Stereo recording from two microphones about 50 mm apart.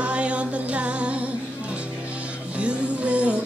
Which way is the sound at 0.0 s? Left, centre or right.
Right.